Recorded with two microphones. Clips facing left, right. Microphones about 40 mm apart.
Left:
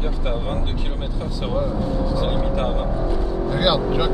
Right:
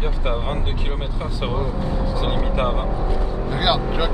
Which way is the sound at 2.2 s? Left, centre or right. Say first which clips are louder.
Even; right.